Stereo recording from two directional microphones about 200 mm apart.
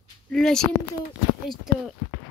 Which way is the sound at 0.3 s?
5° left (ahead or behind).